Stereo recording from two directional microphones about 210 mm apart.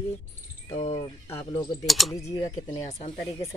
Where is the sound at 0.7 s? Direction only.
35° left (ahead or behind).